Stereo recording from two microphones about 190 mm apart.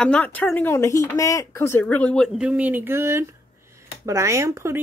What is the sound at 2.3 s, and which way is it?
Speech, 5° right (ahead or behind).